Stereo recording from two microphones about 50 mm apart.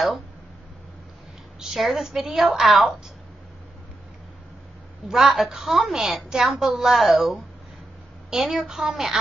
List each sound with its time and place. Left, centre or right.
1.6 s a woman's voice: centre
5.0 s a woman's voice: centre